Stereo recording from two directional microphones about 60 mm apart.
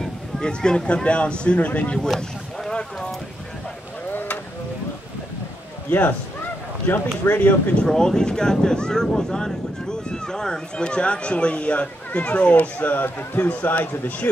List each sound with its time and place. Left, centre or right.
0.0 s speech: centre
2.1 s a sound: centre
4.1 s a sound: left
5.9 s speech: left
7.2 s speech: left
7.8 s speech: centre; by 14.3 s left